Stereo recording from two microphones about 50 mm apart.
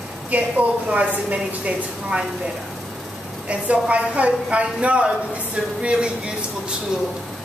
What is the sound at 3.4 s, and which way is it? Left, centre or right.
A woman's voice, right.